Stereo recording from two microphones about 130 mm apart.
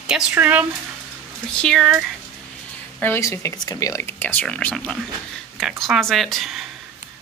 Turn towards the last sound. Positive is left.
turn(degrees=0)  # may be behind; listen again after turning